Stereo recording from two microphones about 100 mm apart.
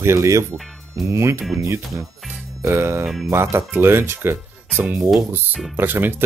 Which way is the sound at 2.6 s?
30° right (ahead or behind).